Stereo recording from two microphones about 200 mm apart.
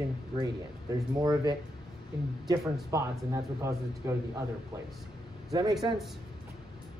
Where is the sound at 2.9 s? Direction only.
15° right (ahead or behind).